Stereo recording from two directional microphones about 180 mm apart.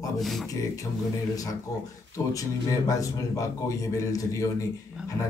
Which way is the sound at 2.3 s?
20° left (ahead or behind).